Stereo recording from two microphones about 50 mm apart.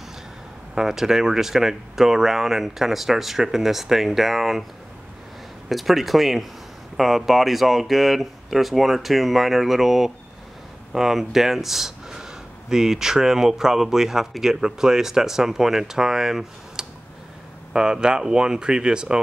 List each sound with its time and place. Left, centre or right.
0.7 s speech: centre
5.7 s speech: centre